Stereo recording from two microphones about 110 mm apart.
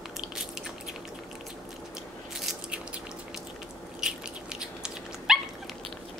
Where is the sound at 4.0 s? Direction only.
5° right (ahead or behind).